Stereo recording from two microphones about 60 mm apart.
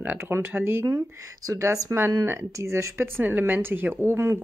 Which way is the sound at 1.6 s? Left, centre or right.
Right.